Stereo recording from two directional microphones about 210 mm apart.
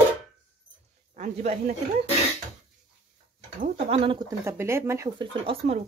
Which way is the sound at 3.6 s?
30° right (ahead or behind).